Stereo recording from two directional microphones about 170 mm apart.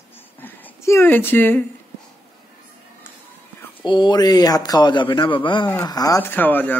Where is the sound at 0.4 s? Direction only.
10° left (ahead or behind).